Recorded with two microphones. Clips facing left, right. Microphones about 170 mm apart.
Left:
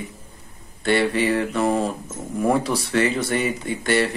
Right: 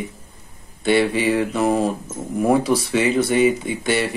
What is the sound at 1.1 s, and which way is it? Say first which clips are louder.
Speech: right 1 dB; 10° right (ahead or behind).